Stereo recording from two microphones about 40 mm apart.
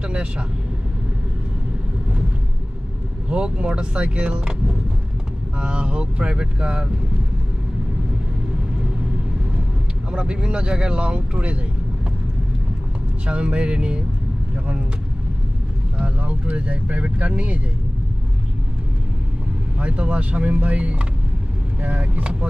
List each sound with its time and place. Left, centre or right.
3.3 s speech: right
5.6 s speech: right
10.1 s speech: right
13.3 s speech: right
16.0 s speech: right
19.8 s speech: right
22.2 s speech: right